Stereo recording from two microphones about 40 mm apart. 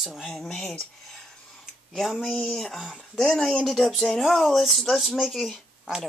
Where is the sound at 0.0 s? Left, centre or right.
Centre.